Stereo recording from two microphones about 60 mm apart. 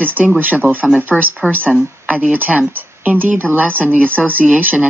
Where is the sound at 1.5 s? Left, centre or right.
Right.